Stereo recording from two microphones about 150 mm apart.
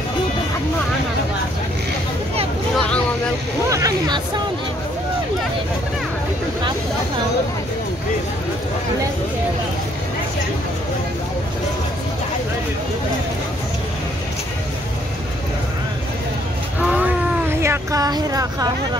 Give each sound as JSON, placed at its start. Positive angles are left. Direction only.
{"t": 2.7, "sound": "vehicle", "side_deg": 5}
{"t": 3.7, "sound": "speech", "side_deg": -25}
{"t": 17.6, "sound": "speech", "side_deg": -20}